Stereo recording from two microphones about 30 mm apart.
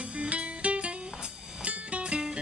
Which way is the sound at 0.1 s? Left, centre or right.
Right.